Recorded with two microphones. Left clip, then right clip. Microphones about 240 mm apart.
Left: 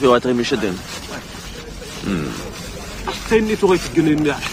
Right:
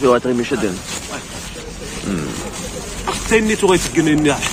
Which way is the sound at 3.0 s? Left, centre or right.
Centre.